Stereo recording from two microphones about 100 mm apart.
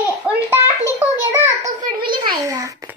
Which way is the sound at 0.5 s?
20° right (ahead or behind).